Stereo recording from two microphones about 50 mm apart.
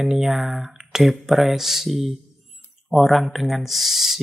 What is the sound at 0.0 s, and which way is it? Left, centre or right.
Speech, centre.